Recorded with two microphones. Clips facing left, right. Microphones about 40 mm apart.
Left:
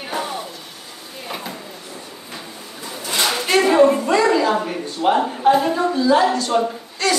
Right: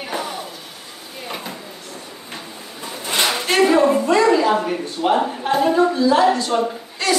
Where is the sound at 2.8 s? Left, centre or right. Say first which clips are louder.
Right 1 dB; right.